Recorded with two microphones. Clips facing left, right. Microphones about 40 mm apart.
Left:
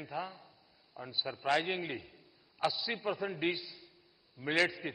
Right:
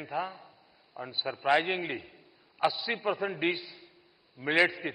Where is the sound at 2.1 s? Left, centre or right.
Centre.